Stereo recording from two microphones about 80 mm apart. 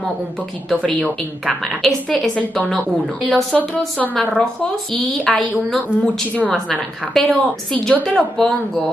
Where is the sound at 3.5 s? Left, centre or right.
Centre.